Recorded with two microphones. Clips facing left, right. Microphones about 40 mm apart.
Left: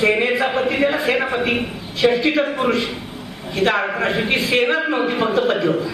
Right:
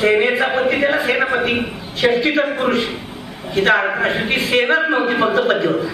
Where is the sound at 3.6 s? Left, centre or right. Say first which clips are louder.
Right 3 dB; right.